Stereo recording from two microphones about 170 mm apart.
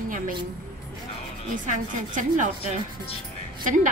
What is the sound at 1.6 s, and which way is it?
Speech, 50° right (ahead or behind).